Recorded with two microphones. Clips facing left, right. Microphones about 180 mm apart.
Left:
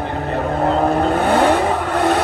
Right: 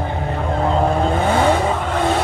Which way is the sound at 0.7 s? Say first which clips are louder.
Even; 5° left (ahead or behind).